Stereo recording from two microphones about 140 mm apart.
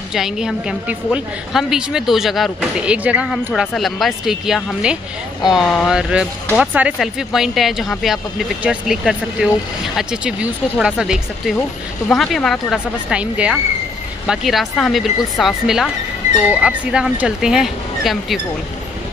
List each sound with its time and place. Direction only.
0.1 s a woman's voice: 5° right (ahead or behind)
12.7 s a woman's voice: 10° right (ahead or behind)